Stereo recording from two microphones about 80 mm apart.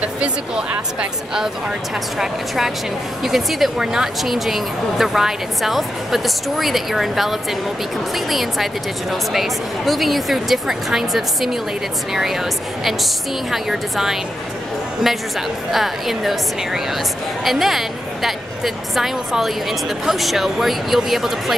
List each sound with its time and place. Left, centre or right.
0.0 s speech: centre
2.1 s a woman's voice: centre
15.7 s a woman's voice: centre